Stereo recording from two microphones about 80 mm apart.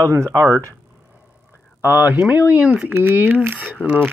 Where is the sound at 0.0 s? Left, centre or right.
Right.